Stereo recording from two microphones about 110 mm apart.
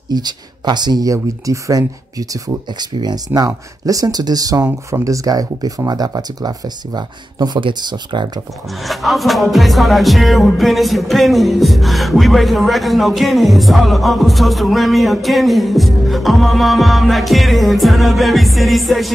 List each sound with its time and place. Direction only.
0.1 s speech: 40° right (ahead or behind)
8.8 s music: centre (ahead or behind)